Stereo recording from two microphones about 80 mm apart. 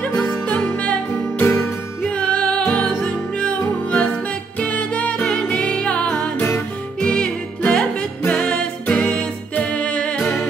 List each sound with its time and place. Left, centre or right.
0.5 s music: centre
1.4 s music: left
2.0 s music: centre
7.0 s music: centre
8.2 s music: left
8.5 s music: centre
10.2 s music: left